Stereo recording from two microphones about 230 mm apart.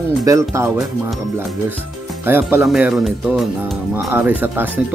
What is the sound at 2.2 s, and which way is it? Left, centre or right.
Speech, centre.